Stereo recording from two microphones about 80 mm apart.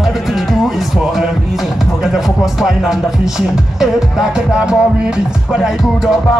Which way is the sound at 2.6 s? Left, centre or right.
Centre.